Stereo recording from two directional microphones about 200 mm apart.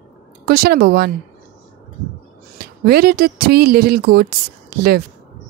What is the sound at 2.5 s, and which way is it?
Speech, 50° right (ahead or behind).